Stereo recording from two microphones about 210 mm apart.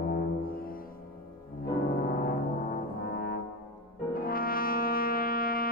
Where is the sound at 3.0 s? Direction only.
45° left (ahead or behind).